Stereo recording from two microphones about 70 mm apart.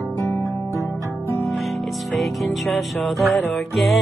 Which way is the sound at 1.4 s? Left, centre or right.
Centre.